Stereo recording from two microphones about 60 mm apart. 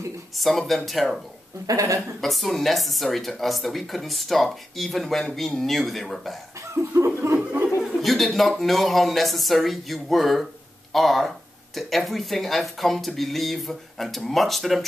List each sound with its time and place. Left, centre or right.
0.4 s speech: centre
1.7 s speech: right
2.2 s speech: centre
6.7 s chuckle: right
8.0 s speech: centre